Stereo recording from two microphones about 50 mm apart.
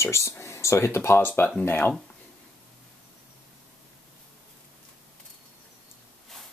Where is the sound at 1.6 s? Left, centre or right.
Left.